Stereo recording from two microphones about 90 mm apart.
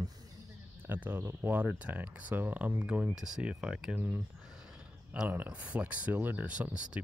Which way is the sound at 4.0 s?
20° right (ahead or behind).